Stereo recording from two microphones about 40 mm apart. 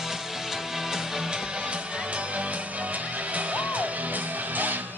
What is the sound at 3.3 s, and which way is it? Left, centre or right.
Music, right.